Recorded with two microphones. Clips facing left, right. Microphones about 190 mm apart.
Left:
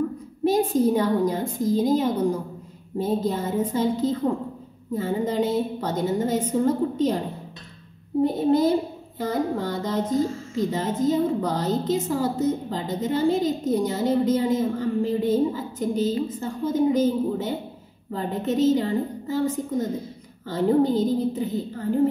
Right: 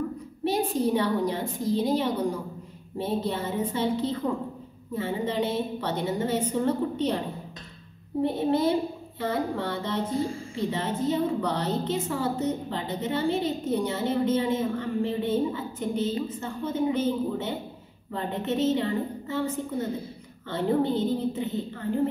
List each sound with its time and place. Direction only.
0.5 s a woman's voice: 45° left (ahead or behind)
8.2 s a woman's voice: 40° left (ahead or behind)